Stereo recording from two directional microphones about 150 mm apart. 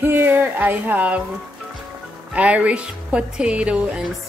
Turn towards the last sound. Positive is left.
turn(degrees=-5)  # may be behind; listen again after turning